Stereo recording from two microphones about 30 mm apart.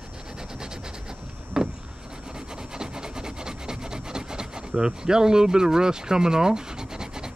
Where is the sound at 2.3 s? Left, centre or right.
Right.